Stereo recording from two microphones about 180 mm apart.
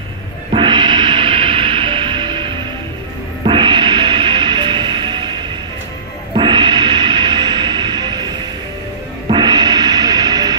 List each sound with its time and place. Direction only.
0.5 s music: 25° right (ahead or behind)
6.3 s music: 25° right (ahead or behind)